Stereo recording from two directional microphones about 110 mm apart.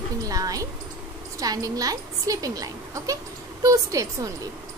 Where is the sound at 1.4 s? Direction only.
35° right (ahead or behind).